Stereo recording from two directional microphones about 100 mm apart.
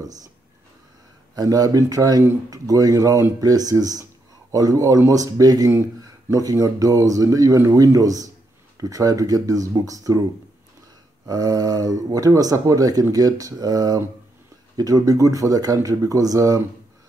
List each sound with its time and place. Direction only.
0.0 s speech: 35° right (ahead or behind)
1.3 s speech: 40° right (ahead or behind)
11.2 s speech: 40° right (ahead or behind)